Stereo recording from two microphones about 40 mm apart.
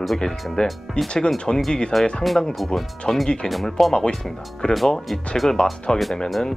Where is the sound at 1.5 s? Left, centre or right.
Centre.